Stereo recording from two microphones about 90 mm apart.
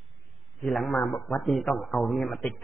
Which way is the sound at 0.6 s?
Centre (ahead or behind).